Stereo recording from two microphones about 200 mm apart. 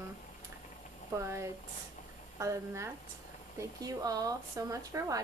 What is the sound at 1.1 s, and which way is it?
A woman's voice, 15° right (ahead or behind).